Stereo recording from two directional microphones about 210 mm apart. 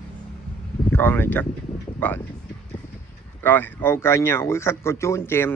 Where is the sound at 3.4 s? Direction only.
10° left (ahead or behind).